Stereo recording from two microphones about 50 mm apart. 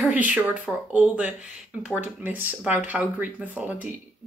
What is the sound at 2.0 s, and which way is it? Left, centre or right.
Speech, right.